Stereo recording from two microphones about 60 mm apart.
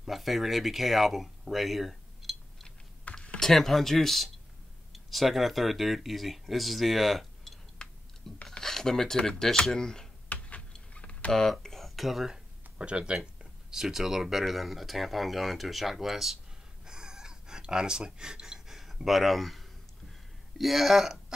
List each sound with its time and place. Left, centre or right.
0.0 s speech: centre
3.1 s computer keyboard: left
3.3 s speech: centre
7.8 s a sound: centre
8.5 s speech: centre
10.3 s power windows: left
11.6 s a sound: centre
12.7 s speech: centre
16.8 s a sound: centre